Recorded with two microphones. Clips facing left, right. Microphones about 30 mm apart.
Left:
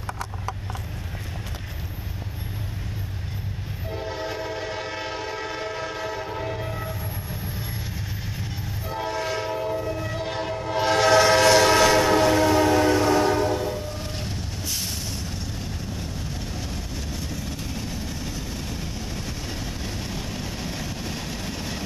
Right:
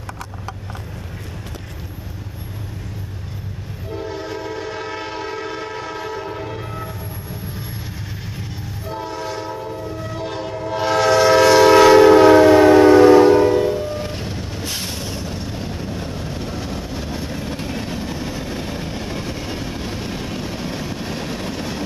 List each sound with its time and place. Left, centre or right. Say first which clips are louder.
3.9 s train: right 3 dB; centre
9.0 s train horn: left 1 dB; centre
9.6 s train: left 1 dB; centre
14.6 s vehicle: right 4 dB; right